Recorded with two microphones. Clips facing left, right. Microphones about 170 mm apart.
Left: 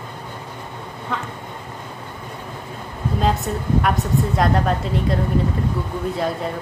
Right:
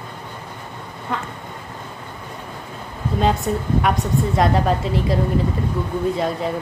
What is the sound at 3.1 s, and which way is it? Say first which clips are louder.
Speech: right 2 dB; centre (ahead or behind).